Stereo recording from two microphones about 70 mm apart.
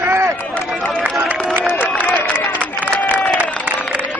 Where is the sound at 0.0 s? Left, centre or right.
Right.